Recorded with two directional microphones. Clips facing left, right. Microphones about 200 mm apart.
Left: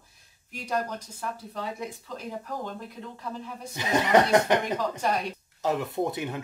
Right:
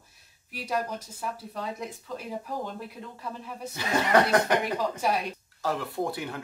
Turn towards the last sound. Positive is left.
turn(degrees=20)  # may be behind; listen again after turning